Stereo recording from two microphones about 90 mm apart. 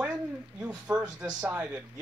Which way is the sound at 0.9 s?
40° right (ahead or behind).